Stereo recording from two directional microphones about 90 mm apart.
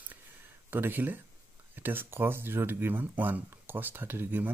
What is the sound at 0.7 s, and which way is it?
Speech, 25° right (ahead or behind).